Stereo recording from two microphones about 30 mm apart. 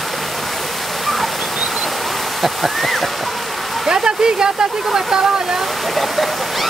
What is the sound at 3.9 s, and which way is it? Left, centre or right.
Speech, right.